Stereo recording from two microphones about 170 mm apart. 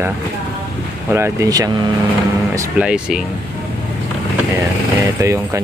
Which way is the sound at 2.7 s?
5° right (ahead or behind).